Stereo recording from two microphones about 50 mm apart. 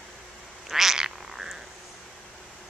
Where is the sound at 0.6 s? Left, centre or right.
Centre.